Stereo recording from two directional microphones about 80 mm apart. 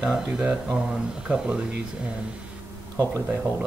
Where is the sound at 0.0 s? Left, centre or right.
Centre.